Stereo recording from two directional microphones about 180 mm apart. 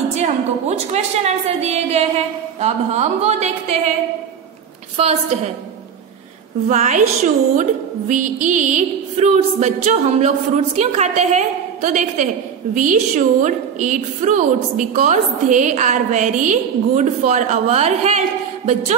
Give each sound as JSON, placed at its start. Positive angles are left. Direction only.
{"t": 0.1, "sound": "a woman's voice", "side_deg": -40}
{"t": 4.9, "sound": "a woman's voice", "side_deg": -35}
{"t": 6.7, "sound": "a woman's voice", "side_deg": -40}
{"t": 8.1, "sound": "a woman's voice", "side_deg": -45}